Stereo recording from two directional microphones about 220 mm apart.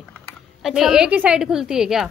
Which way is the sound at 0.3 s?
Centre (ahead or behind).